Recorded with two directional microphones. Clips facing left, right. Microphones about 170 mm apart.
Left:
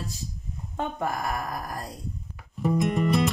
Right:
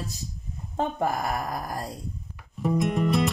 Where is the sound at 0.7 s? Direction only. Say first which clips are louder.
Right 3 dB; 30° right (ahead or behind).